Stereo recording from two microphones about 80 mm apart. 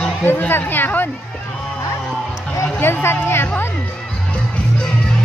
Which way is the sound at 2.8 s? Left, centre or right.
Left.